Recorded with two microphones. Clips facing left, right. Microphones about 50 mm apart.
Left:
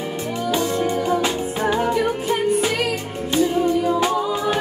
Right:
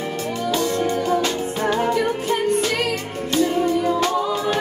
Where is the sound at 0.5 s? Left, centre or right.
Centre.